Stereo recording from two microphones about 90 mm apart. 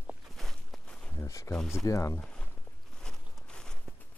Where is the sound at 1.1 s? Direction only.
35° left (ahead or behind).